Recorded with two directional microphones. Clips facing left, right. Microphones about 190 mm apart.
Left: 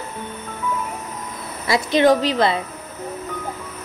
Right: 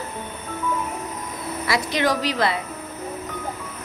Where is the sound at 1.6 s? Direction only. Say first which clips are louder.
Left 7 dB; 25° left (ahead or behind).